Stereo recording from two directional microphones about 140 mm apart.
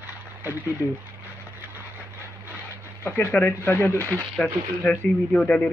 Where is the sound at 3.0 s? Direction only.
15° left (ahead or behind).